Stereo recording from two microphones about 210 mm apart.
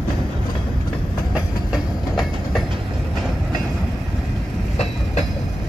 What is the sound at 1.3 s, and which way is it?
Train, centre (ahead or behind).